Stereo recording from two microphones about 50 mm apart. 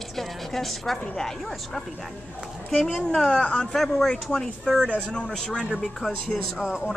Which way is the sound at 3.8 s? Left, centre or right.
Centre.